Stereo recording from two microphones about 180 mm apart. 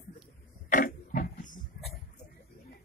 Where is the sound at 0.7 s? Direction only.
50° left (ahead or behind).